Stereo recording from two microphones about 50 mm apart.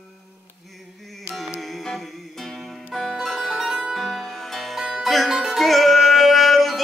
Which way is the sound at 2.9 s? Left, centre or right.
Centre.